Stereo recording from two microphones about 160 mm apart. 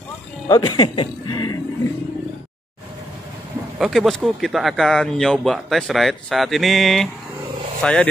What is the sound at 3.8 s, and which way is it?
Speech, centre (ahead or behind).